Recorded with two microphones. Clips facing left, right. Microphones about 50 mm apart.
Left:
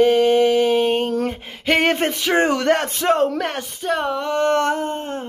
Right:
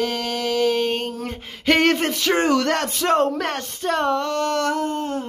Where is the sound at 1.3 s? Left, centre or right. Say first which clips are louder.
Even; centre.